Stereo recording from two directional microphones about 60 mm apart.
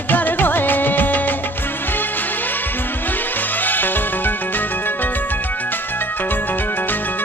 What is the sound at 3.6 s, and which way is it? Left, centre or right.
Music, left.